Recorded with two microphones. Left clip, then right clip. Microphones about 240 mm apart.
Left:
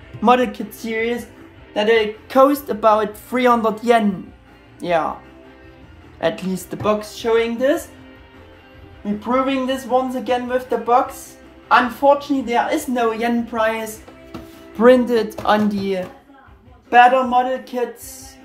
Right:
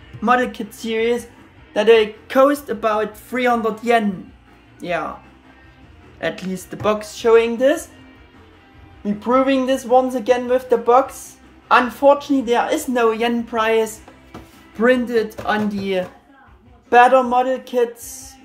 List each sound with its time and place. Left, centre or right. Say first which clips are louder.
0.2 s a woman's voice: left 2 dB; centre
6.1 s a woman's voice: left 3 dB; centre
9.0 s speech: right 3 dB; centre
12.0 s a woman's voice: right 1 dB; centre
17.1 s a woman's voice: right 1 dB; centre